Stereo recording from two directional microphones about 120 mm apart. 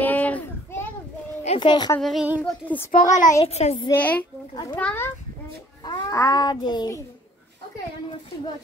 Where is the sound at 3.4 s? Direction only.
65° left (ahead or behind).